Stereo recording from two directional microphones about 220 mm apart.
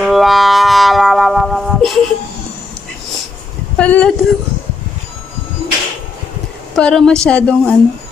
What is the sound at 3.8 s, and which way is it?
Speech, 5° left (ahead or behind).